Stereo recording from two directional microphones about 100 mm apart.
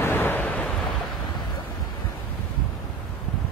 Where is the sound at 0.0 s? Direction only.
20° left (ahead or behind).